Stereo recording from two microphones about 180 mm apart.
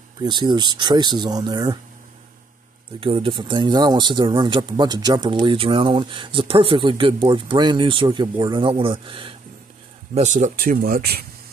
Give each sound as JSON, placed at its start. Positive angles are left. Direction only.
{"t": 0.2, "sound": "speech", "side_deg": -25}
{"t": 3.0, "sound": "speech", "side_deg": -30}
{"t": 10.1, "sound": "speech", "side_deg": -40}